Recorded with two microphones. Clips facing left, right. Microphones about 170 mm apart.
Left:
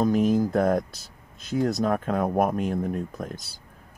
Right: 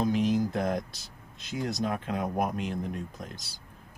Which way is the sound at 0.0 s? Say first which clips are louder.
Left 5 dB; 45° left (ahead or behind).